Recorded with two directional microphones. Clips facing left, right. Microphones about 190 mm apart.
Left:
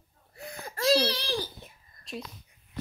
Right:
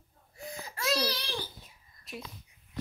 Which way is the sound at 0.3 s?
65° left (ahead or behind).